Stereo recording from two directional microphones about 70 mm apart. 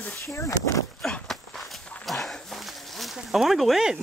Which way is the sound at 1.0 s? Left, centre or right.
Centre.